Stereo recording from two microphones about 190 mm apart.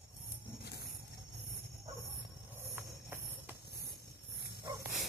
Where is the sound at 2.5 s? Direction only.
10° right (ahead or behind).